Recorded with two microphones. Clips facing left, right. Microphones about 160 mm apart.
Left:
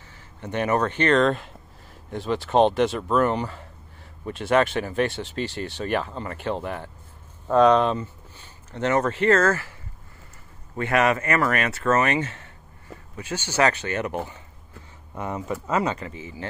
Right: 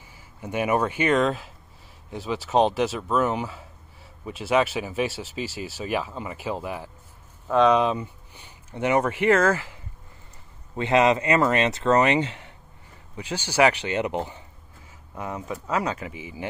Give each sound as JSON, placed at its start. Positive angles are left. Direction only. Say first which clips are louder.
{"t": 0.1, "sound": "speech", "louder": "even", "side_deg": -10}
{"t": 10.8, "sound": "speech", "louder": "right 2 dB", "side_deg": -20}
{"t": 15.1, "sound": "speech", "louder": "left 3 dB", "side_deg": 0}